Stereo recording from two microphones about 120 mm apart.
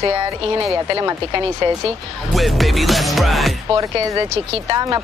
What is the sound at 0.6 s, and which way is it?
Speech, 30° right (ahead or behind).